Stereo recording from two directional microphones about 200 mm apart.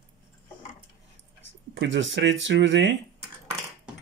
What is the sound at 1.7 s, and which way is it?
Cutlery, 65° right (ahead or behind).